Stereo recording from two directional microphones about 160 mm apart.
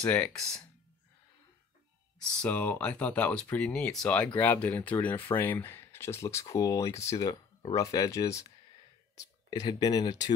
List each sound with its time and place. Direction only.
0.0 s speech: 5° left (ahead or behind)
2.3 s speech: 10° left (ahead or behind); by 10.3 s 25° left (ahead or behind)